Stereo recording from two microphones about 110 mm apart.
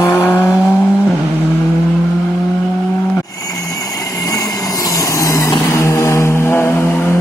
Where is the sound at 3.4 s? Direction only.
35° left (ahead or behind).